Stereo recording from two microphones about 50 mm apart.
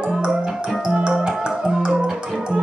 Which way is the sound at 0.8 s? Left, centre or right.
Centre.